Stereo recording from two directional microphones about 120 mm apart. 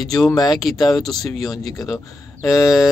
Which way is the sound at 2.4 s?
25° left (ahead or behind).